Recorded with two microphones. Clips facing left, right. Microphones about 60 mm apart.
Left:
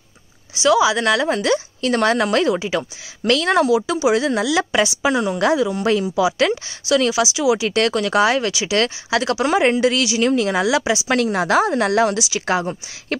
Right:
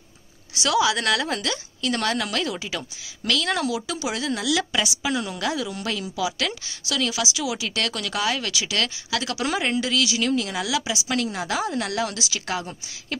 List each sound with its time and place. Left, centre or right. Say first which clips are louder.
0.6 s a woman's voice: left 6 dB; centre; by 7.6 s left
7.6 s a woman's voice: left 9 dB; left
8.5 s speech: left 6 dB; centre
8.7 s a woman's voice: left 9 dB; left
10.3 s a woman's voice: left 7 dB; left
11.1 s a woman's voice: left 8 dB; left